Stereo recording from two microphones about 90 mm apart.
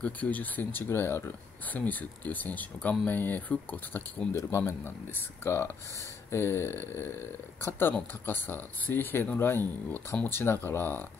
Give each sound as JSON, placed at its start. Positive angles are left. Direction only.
{"t": 0.0, "sound": "speech", "side_deg": 15}
{"t": 4.4, "sound": "speech", "side_deg": 30}